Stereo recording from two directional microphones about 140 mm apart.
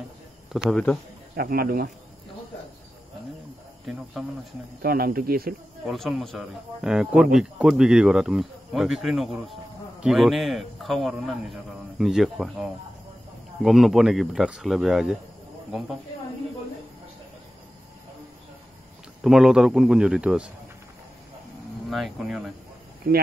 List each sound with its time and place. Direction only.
0.5 s speech: centre (ahead or behind)
1.3 s speech: 90° right
3.8 s speech: 5° right (ahead or behind)
4.8 s speech: 90° right
5.9 s speech: centre (ahead or behind)
19.2 s speech: 5° right (ahead or behind)
21.8 s speech: centre (ahead or behind)